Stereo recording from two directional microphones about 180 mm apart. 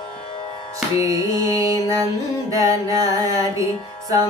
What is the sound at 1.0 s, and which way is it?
Music, 20° right (ahead or behind).